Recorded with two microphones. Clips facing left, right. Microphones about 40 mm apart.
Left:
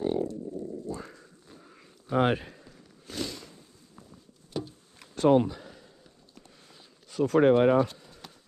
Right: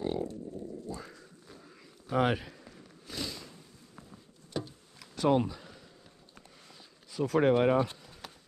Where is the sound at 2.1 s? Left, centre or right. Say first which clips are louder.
Left 3 dB; left.